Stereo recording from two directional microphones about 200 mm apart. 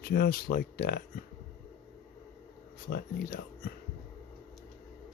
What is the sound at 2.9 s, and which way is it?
Speech, 45° left (ahead or behind).